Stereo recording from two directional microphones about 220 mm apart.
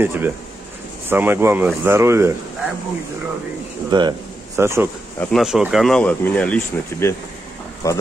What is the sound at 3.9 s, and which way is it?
Speech, 20° right (ahead or behind).